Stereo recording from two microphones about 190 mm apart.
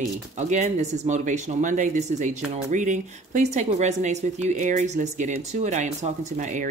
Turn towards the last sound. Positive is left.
turn(degrees=-40)  # may be behind; listen again after turning